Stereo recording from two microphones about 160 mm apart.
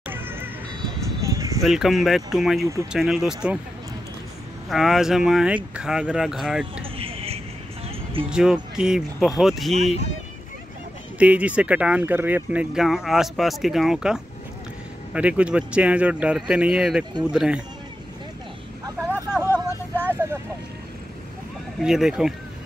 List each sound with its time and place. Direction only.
0.1 s music: 15° right (ahead or behind)
1.2 s a sound: 20° right (ahead or behind)
1.6 s speech: centre (ahead or behind)
4.6 s speech: centre (ahead or behind)
7.0 s a sound: 35° right (ahead or behind)
8.3 s speech: 5° right (ahead or behind)
11.1 s speech: 10° right (ahead or behind)
19.4 s vehicle: 10° left (ahead or behind)
21.7 s speech: centre (ahead or behind)